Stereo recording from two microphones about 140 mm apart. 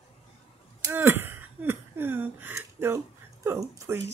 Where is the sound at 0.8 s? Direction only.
15° right (ahead or behind).